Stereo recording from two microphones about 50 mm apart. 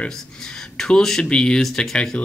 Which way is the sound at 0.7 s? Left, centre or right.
Centre.